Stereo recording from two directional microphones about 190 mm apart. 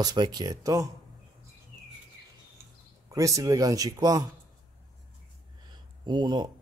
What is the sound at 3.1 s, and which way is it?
Speech, 15° right (ahead or behind).